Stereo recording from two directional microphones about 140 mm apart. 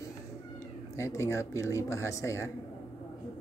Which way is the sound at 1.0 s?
20° left (ahead or behind).